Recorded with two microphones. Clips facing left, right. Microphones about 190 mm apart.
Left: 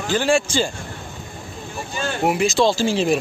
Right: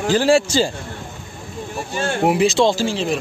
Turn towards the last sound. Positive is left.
turn(degrees=10)  # may be behind; listen again after turning